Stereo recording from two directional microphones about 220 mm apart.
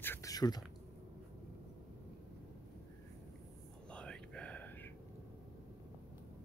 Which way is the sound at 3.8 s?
5° left (ahead or behind).